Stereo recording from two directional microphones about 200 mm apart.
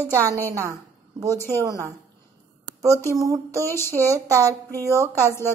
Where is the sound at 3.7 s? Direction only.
10° left (ahead or behind).